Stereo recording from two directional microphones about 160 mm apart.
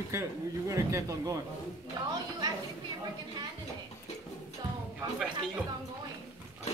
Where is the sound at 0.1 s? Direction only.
20° right (ahead or behind).